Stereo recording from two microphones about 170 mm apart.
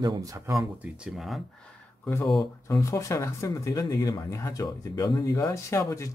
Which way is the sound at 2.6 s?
20° left (ahead or behind).